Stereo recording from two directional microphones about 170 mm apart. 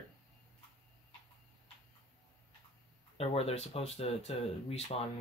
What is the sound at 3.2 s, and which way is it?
Speech, 35° left (ahead or behind).